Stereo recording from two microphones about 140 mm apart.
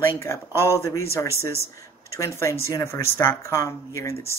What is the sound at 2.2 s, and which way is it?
Speech, 20° left (ahead or behind).